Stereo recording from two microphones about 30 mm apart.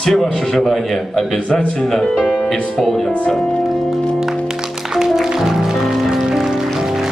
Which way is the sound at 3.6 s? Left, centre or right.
Centre.